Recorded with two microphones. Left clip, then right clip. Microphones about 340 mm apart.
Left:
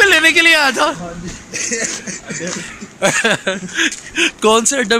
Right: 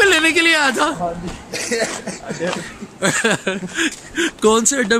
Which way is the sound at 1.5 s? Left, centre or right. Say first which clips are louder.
Left 1 dB; right.